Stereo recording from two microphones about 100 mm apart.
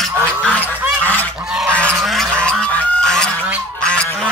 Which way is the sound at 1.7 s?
10° left (ahead or behind).